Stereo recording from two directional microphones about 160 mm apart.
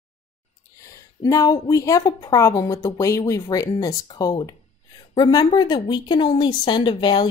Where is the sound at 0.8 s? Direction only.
20° left (ahead or behind).